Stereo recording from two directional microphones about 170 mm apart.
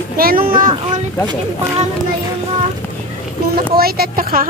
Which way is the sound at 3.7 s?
65° right (ahead or behind).